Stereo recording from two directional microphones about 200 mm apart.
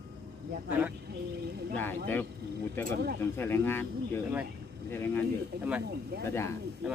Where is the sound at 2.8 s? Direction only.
50° right (ahead or behind).